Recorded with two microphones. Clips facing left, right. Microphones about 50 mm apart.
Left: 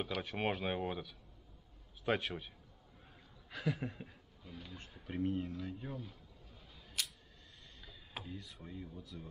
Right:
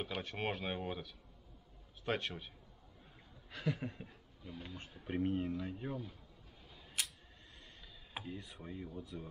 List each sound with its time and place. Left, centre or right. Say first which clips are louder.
0.2 s speech: left 3 dB; centre
4.6 s speech: right 1 dB; centre
7.0 s camera: even; right
8.1 s a sound: right 2 dB; centre
8.5 s speech: right 2 dB; centre